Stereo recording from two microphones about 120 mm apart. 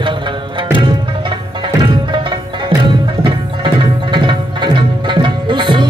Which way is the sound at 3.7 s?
40° right (ahead or behind).